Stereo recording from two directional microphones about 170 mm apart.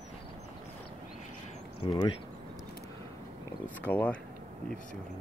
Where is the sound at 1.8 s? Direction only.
30° left (ahead or behind).